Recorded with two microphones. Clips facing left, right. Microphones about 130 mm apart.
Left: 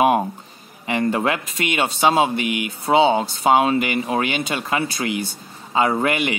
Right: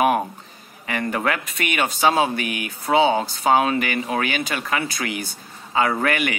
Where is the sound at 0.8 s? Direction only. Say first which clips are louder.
Left 3 dB; 25° left (ahead or behind).